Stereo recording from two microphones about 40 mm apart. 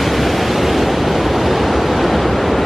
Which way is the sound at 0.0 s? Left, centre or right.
Centre.